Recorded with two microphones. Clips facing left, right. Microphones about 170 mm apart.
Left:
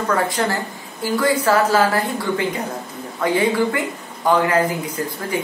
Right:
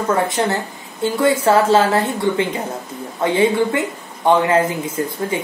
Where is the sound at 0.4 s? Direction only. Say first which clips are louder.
Right 2 dB; 20° right (ahead or behind).